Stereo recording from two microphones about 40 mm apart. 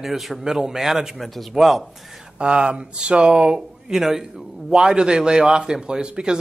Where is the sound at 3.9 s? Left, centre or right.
Centre.